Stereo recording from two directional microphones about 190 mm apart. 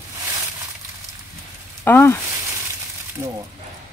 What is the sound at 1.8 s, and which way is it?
Speech, 10° left (ahead or behind).